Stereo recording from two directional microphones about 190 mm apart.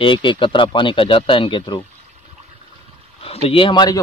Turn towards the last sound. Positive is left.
turn(degrees=25)  # may be behind; listen again after turning